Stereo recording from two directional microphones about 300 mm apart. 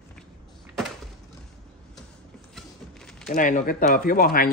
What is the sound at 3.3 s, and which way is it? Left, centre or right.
Speech, left.